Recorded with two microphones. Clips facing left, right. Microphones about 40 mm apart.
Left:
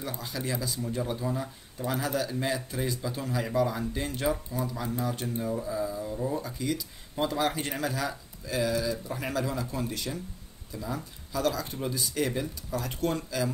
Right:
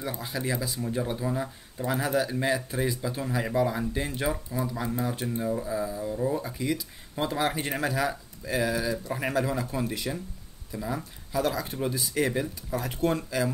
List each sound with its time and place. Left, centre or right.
0.0 s speech: right
7.2 s speech: right